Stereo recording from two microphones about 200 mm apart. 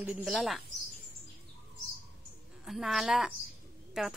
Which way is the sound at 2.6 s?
Centre (ahead or behind).